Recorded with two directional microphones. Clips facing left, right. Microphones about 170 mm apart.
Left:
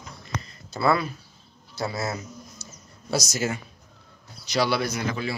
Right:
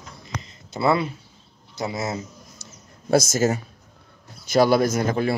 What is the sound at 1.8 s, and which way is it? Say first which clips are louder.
Speech: right 2 dB; 20° right (ahead or behind).